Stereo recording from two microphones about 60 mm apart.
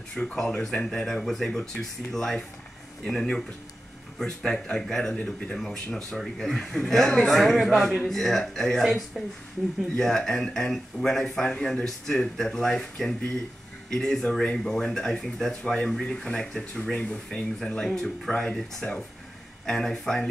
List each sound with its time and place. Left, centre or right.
0.1 s speech: centre
4.5 s a man's voice: centre